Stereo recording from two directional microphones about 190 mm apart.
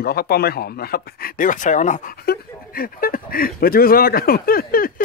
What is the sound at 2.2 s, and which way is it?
Speech, 55° left (ahead or behind).